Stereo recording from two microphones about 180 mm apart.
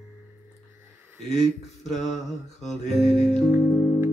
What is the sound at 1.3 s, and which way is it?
Speech, centre (ahead or behind).